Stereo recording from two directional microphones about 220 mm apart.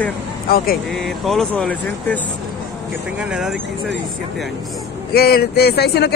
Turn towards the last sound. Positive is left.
turn(degrees=50)  # may be behind; listen again after turning